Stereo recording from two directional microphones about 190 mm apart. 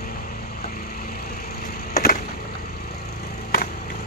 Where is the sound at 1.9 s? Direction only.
50° left (ahead or behind).